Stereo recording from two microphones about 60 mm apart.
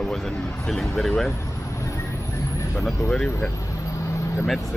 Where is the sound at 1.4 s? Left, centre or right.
Left.